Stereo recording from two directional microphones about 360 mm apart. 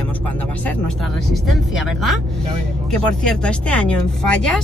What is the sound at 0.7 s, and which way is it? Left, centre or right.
Speech, centre.